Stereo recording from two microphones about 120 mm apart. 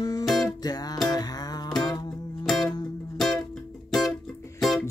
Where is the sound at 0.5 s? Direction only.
35° left (ahead or behind).